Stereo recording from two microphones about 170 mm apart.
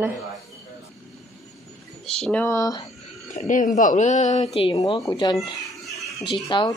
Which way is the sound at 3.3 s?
50° left (ahead or behind).